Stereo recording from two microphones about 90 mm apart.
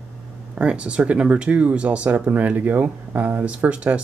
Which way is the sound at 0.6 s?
10° right (ahead or behind).